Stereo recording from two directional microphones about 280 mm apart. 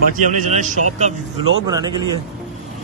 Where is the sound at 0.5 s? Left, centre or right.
Right.